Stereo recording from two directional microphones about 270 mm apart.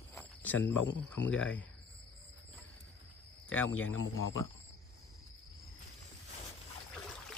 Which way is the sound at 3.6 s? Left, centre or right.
Left.